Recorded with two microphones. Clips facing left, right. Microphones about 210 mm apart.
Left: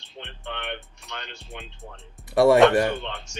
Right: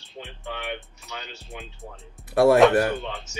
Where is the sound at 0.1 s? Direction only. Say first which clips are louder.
Right 1 dB; 5° right (ahead or behind).